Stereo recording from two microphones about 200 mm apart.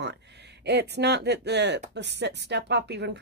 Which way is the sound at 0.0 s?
60° right (ahead or behind).